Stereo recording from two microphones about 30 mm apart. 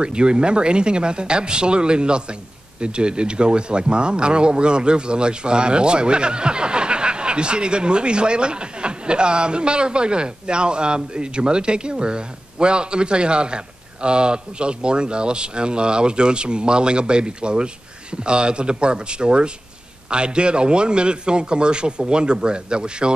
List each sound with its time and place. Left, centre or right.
0.0 s speech: right